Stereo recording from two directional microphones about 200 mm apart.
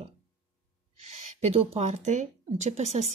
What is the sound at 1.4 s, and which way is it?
Speech, 35° right (ahead or behind).